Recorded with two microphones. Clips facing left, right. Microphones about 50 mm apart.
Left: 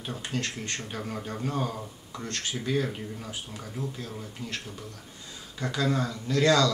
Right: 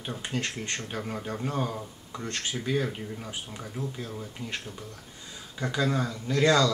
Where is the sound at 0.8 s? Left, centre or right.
Centre.